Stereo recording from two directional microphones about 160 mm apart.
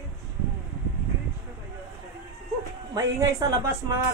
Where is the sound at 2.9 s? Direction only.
20° right (ahead or behind).